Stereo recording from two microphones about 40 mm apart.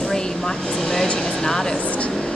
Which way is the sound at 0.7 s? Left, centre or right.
Centre.